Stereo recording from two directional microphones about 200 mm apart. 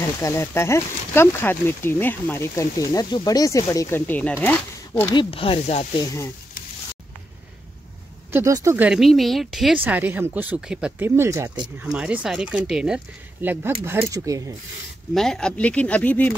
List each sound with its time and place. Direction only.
0.0 s speech: 15° left (ahead or behind)
5.1 s speech: 25° left (ahead or behind)
8.3 s speech: 15° right (ahead or behind)
11.8 s speech: 5° right (ahead or behind)
15.1 s speech: centre (ahead or behind)